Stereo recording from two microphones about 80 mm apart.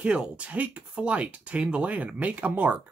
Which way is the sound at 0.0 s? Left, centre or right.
Centre.